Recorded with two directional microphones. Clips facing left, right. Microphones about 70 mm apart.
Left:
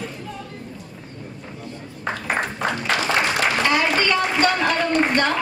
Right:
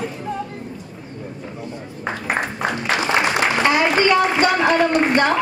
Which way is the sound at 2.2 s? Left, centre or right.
Centre.